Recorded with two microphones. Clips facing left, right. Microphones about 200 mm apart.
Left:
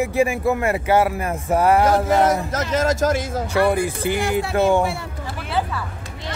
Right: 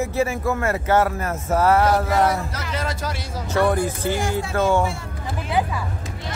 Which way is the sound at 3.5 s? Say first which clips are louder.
Even; 10° left (ahead or behind).